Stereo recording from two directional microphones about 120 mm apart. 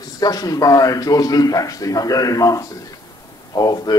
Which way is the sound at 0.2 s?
30° left (ahead or behind).